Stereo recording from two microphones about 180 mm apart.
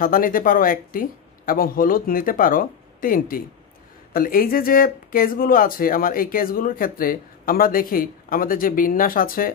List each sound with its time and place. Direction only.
0.0 s speech: 50° left (ahead or behind)